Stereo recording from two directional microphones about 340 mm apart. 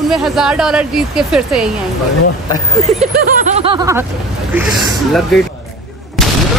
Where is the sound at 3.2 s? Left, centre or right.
Right.